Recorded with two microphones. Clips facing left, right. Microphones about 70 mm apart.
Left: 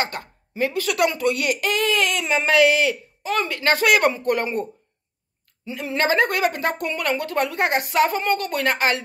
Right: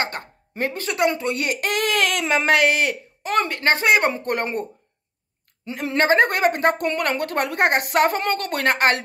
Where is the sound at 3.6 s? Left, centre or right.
Right.